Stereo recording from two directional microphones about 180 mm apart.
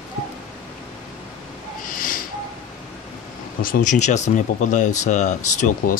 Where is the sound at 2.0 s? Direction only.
50° left (ahead or behind).